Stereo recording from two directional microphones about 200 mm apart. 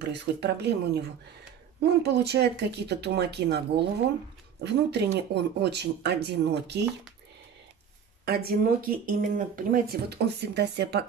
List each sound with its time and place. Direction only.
0.0 s speech: 55° right (ahead or behind)
8.3 s speech: 50° right (ahead or behind)